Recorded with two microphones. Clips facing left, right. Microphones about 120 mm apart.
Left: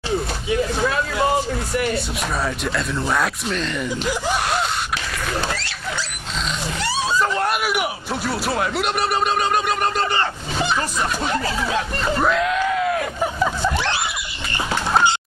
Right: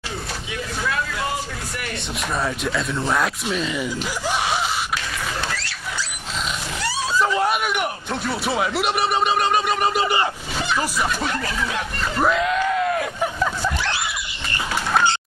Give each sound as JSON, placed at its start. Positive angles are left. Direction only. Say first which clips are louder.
{"t": 0.5, "sound": "vehicle", "louder": "left 7 dB", "side_deg": 30}
{"t": 2.3, "sound": "speech", "louder": "right 1 dB", "side_deg": 0}
{"t": 4.3, "sound": "a sound", "louder": "even", "side_deg": 0}
{"t": 7.2, "sound": "speech", "louder": "right 3 dB", "side_deg": 0}
{"t": 11.2, "sound": "speech", "louder": "left 3 dB", "side_deg": 30}
{"t": 12.2, "sound": "screaming", "louder": "right 1 dB", "side_deg": 0}